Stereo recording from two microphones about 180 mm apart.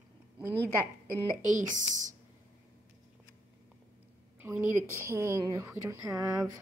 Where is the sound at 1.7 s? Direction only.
45° right (ahead or behind).